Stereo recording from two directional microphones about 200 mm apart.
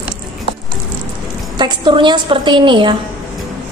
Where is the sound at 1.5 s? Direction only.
25° right (ahead or behind).